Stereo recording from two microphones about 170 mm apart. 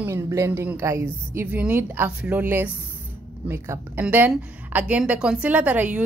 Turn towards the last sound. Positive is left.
turn(degrees=-10)  # may be behind; listen again after turning